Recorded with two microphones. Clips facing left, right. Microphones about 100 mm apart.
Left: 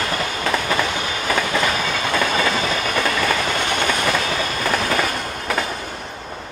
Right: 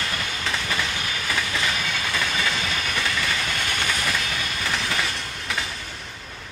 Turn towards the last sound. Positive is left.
turn(degrees=50)  # may be behind; listen again after turning